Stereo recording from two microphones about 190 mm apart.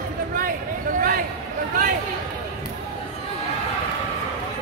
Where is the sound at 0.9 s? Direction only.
45° right (ahead or behind).